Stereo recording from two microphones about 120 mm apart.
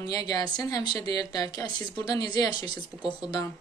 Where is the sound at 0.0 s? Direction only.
30° left (ahead or behind).